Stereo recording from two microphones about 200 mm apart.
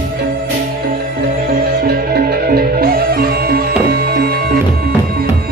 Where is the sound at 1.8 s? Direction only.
50° right (ahead or behind).